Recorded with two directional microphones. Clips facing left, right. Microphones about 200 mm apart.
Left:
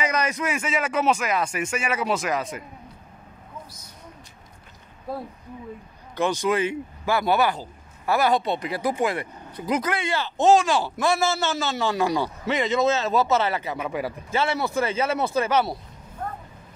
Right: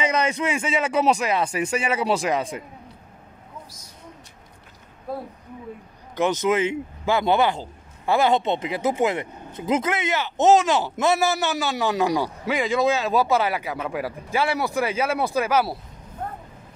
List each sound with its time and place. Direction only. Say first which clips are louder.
0.0 s speech: right 2 dB; 25° right (ahead or behind)
6.1 s speech: right 2 dB; 20° right (ahead or behind)